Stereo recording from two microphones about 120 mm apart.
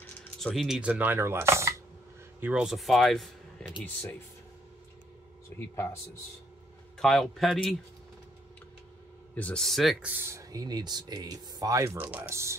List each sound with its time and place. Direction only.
0.4 s speech: centre (ahead or behind); by 1.8 s 25° right (ahead or behind)
2.4 s speech: 5° right (ahead or behind); by 4.2 s 10° left (ahead or behind)
7.0 s speech: 5° left (ahead or behind)
9.3 s speech: 10° left (ahead or behind)
10.0 s speech: 15° right (ahead or behind)